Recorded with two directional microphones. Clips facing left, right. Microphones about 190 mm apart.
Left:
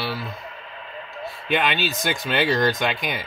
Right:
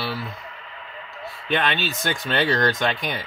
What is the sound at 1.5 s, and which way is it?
Speech, 10° left (ahead or behind).